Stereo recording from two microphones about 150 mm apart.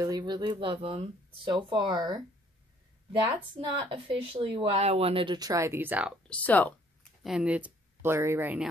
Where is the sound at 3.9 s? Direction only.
35° right (ahead or behind); by 6.2 s 10° right (ahead or behind).